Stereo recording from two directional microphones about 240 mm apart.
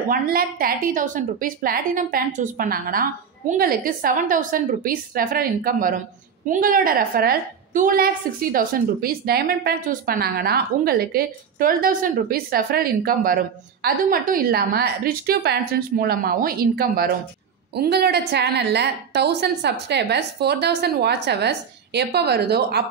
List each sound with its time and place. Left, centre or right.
0.1 s a woman's voice: right